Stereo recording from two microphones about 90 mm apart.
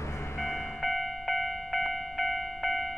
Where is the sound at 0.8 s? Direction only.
Centre (ahead or behind).